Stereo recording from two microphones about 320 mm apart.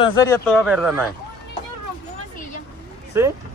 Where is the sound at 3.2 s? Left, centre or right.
Centre.